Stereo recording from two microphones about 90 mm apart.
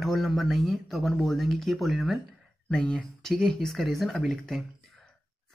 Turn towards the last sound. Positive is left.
turn(degrees=0)  # may be behind; listen again after turning